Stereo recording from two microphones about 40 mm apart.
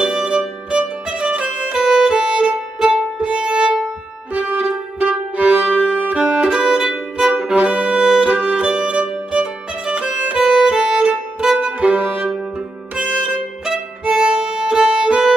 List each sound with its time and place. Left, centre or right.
0.0 s music: centre
0.7 s music: right
1.9 s violin: centre
2.8 s music: centre
4.3 s music: right
6.1 s music: right
7.2 s music: right
7.9 s music: centre
8.3 s music: right
10.3 s music: centre
11.0 s violin: right
11.8 s music: right; by 14.6 s centre
14.7 s violin: centre